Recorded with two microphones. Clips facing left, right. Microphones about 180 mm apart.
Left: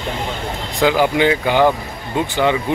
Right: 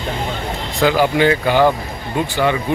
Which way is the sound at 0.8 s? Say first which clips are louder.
Even; 15° left (ahead or behind).